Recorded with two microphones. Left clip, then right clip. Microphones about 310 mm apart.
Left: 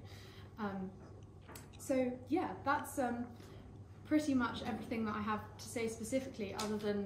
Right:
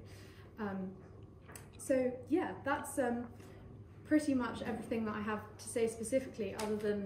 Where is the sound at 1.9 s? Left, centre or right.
Centre.